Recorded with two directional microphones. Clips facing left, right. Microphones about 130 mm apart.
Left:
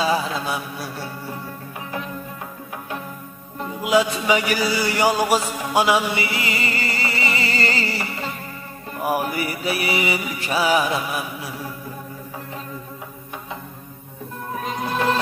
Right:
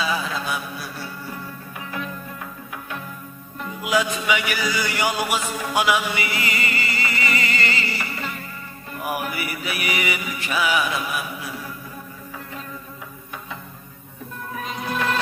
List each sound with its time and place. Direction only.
0.0 s mantra: 30° left (ahead or behind)
3.5 s music: 25° left (ahead or behind)